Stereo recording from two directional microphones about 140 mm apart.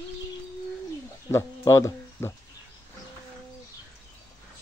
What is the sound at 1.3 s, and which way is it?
Speech, 20° left (ahead or behind).